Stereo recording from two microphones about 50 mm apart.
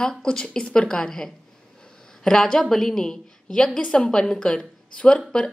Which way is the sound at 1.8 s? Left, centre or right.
Centre.